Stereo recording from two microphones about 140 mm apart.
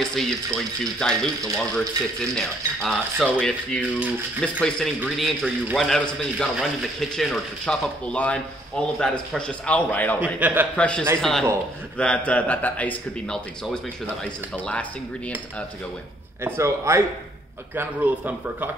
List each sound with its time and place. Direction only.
0.0 s speech: 5° left (ahead or behind)
10.2 s speech: 10° right (ahead or behind)
10.8 s speech: 5° left (ahead or behind)
14.7 s speech: 10° left (ahead or behind)
16.4 s a man's voice: 20° right (ahead or behind)